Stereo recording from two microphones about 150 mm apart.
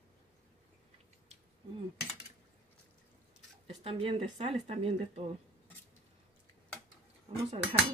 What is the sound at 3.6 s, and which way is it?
Speech, 40° right (ahead or behind).